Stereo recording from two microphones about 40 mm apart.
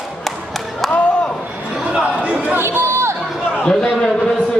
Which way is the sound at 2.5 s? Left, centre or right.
Right.